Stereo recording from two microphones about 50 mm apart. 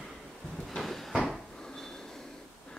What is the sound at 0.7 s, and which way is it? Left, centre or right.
Cupboard open or close, centre.